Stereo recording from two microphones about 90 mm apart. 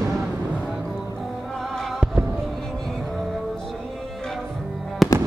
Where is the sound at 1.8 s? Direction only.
Centre (ahead or behind).